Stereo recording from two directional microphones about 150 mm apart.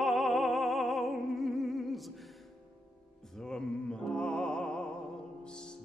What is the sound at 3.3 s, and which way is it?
Music, 5° left (ahead or behind).